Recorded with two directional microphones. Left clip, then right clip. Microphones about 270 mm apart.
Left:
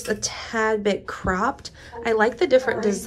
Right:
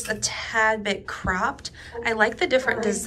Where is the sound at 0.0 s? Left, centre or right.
Left.